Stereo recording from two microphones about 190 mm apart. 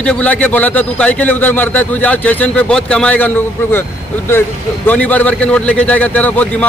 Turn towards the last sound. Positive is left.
turn(degrees=10)  # may be behind; listen again after turning